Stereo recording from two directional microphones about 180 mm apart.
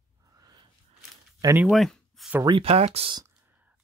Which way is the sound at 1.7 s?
Centre (ahead or behind).